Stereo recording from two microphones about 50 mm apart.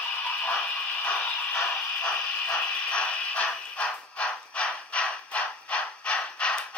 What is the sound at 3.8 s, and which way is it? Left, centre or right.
Crow, left.